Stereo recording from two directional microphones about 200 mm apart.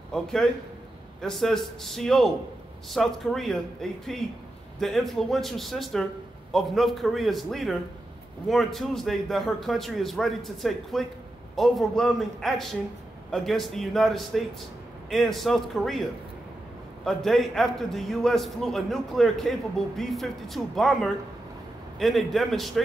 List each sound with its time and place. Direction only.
0.1 s a man's voice: 5° left (ahead or behind)